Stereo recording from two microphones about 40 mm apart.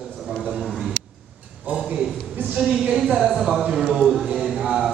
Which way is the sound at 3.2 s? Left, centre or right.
Centre.